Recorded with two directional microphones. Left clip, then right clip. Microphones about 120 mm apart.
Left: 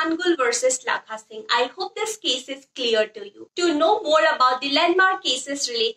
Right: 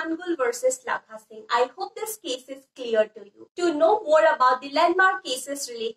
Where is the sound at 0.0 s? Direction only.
25° left (ahead or behind).